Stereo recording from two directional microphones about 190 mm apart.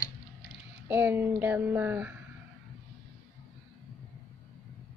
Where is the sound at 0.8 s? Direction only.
10° right (ahead or behind).